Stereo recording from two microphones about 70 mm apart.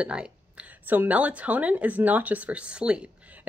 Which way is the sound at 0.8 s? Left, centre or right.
Right.